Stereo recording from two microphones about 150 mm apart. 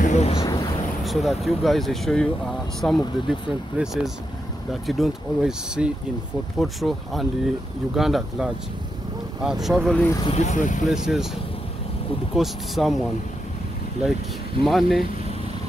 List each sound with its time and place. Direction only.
0.0 s a sound: 50° left (ahead or behind)
0.4 s a sound: 20° left (ahead or behind)
1.0 s speech: centre (ahead or behind)
10.2 s speech: 50° left (ahead or behind)
10.9 s speech: centre (ahead or behind)
12.4 s speech: centre (ahead or behind)
14.6 s speech: centre (ahead or behind)